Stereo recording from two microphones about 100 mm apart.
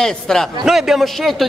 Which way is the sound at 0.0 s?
5° left (ahead or behind).